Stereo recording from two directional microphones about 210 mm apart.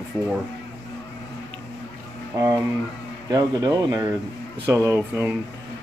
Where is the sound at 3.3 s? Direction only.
20° right (ahead or behind).